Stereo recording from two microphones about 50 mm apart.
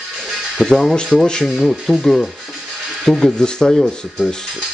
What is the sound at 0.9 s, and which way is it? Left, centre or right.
Speech, centre.